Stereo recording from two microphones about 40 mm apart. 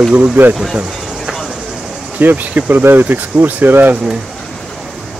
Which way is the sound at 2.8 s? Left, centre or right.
Right.